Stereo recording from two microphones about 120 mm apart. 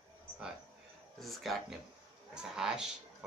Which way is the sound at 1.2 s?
Centre (ahead or behind).